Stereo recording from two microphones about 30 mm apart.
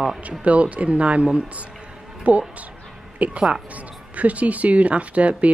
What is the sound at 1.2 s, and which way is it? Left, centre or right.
Speech, right.